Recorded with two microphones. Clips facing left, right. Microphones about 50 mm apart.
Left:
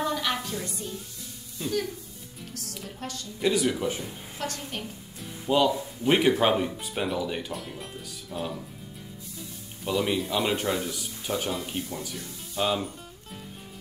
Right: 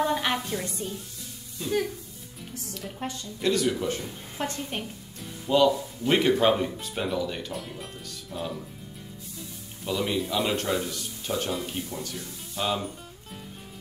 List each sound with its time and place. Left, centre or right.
0.1 s music: right
3.0 s a woman's voice: right
3.3 s a man's voice: centre
4.4 s a woman's voice: right
5.5 s a man's voice: centre